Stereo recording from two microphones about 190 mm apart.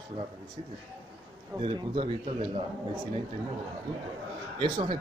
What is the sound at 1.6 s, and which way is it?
Speech, 25° right (ahead or behind).